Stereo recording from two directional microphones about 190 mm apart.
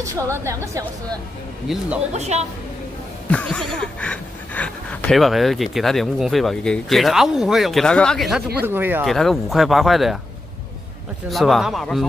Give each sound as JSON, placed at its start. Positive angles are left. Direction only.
{"t": 0.0, "sound": "a woman's voice", "side_deg": -15}
{"t": 1.7, "sound": "speech", "side_deg": 0}
{"t": 2.1, "sound": "a woman's voice", "side_deg": -35}
{"t": 3.3, "sound": "a woman's voice", "side_deg": 5}
{"t": 9.0, "sound": "speech", "side_deg": 0}
{"t": 11.2, "sound": "speech", "side_deg": 0}